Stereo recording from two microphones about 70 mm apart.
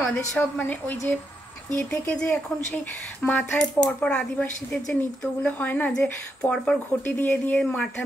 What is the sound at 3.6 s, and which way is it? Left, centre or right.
Speech, centre.